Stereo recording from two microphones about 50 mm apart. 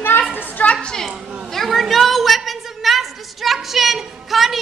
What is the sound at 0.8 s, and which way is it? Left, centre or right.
Speech, centre.